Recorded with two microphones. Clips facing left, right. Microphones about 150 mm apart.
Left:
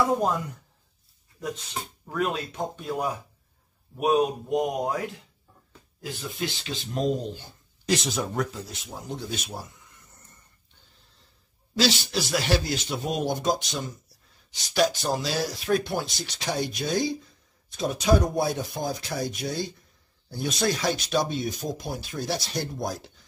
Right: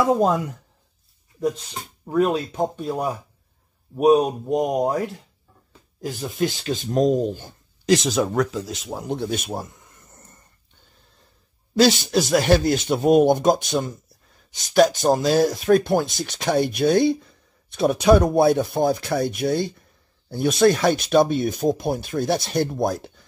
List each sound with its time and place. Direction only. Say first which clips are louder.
0.2 s speech: right 6 dB; 90° right
2.0 s speech: right 8 dB; 30° right (ahead or behind); by 7.5 s 50° right (ahead or behind)
7.9 s speech: right 8 dB; 90° right; by 10.3 s 45° right (ahead or behind)
11.8 s speech: right 8 dB; 45° right (ahead or behind)